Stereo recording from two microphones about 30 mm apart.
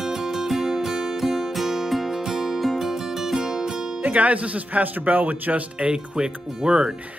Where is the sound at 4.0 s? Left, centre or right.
Right.